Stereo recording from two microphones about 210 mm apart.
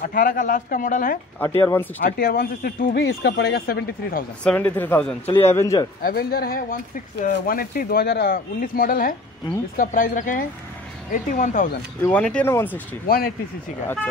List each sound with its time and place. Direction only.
0.0 s speech: 40° left (ahead or behind)
1.4 s speech: 10° left (ahead or behind)
2.0 s speech: 45° left (ahead or behind)
4.5 s speech: 10° left (ahead or behind)
5.2 s a man's voice: 30° left (ahead or behind)
5.5 s speech: 15° left (ahead or behind)
6.0 s speech: 45° left (ahead or behind)
12.0 s speech: 5° left (ahead or behind)
13.0 s speech: 45° left (ahead or behind)